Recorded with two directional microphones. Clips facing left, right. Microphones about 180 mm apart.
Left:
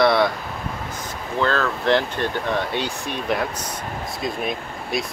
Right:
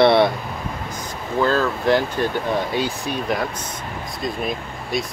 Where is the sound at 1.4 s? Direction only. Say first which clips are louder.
Right 2 dB; 10° right (ahead or behind).